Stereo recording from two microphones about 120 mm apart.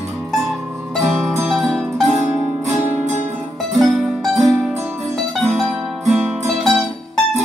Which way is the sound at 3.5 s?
Centre (ahead or behind).